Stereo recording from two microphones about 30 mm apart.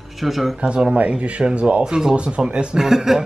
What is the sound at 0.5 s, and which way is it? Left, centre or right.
Speech, right.